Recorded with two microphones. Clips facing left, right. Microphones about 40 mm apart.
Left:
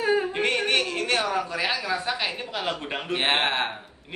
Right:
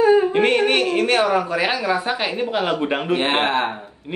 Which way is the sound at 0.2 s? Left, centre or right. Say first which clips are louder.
Right 8 dB; right.